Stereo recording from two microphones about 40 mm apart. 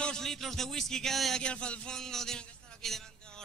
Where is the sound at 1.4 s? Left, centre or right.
Left.